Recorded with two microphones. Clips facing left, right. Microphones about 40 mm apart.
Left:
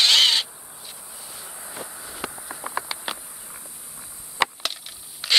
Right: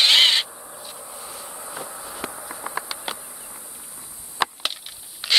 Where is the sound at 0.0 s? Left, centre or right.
Right.